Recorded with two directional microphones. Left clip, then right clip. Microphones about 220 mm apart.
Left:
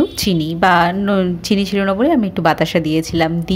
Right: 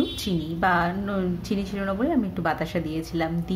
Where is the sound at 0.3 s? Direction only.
40° left (ahead or behind).